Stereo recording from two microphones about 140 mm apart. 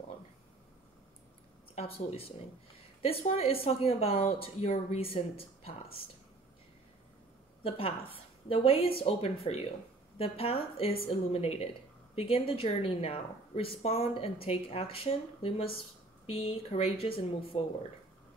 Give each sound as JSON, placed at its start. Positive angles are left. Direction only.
{"t": 1.8, "sound": "speech", "side_deg": 45}
{"t": 7.6, "sound": "speech", "side_deg": 40}